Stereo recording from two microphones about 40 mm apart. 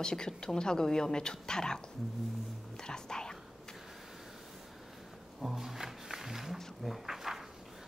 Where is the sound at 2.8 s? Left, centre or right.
Centre.